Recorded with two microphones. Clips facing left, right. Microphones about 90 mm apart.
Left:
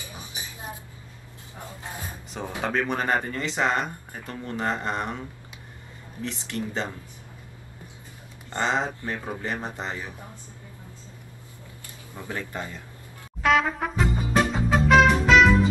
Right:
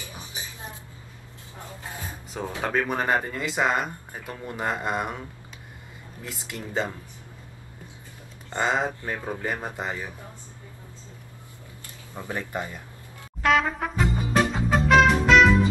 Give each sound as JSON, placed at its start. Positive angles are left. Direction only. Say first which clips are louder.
{"t": 2.6, "sound": "speech", "louder": "even", "side_deg": -5}
{"t": 6.2, "sound": "speech", "louder": "left 5 dB", "side_deg": -5}
{"t": 8.5, "sound": "speech", "louder": "right 1 dB", "side_deg": -5}
{"t": 12.2, "sound": "speech", "louder": "right 2 dB", "side_deg": -20}
{"t": 13.4, "sound": "music", "louder": "even", "side_deg": 0}